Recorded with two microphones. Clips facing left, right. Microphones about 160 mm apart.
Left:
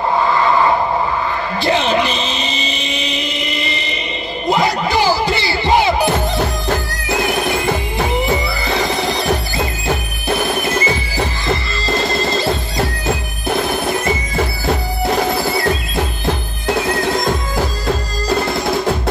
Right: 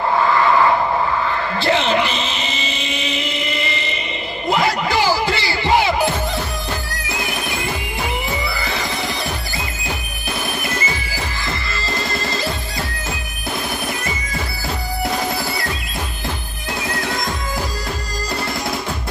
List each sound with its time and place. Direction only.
1.6 s a sound: 15° left (ahead or behind)
4.5 s music: 20° left (ahead or behind)
8.6 s music: 20° left (ahead or behind)
12.0 s music: 25° left (ahead or behind)